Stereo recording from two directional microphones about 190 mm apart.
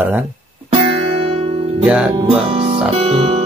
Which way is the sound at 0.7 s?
30° right (ahead or behind).